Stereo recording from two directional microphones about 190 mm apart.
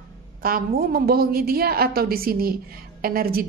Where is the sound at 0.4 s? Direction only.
50° right (ahead or behind).